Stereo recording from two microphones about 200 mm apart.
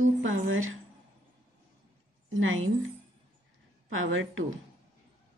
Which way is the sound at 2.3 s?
80° right.